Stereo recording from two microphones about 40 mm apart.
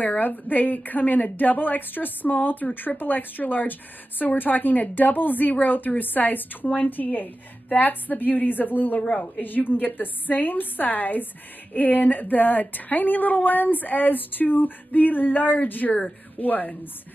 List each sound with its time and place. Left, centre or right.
0.0 s speech: left